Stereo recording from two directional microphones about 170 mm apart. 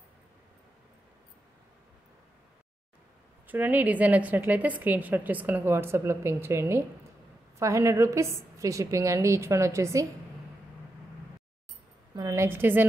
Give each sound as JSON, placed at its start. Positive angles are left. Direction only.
{"t": 3.4, "sound": "a woman's voice", "side_deg": -10}
{"t": 12.2, "sound": "a woman's voice", "side_deg": -20}